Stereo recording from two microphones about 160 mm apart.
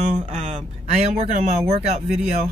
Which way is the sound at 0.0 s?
45° right (ahead or behind).